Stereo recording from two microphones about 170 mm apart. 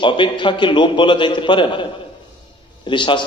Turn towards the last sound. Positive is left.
turn(degrees=30)  # may be behind; listen again after turning